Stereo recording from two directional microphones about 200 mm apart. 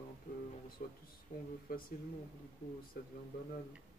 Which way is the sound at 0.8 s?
45° left (ahead or behind).